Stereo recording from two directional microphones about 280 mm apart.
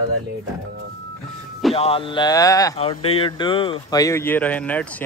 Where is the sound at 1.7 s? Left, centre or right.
Centre.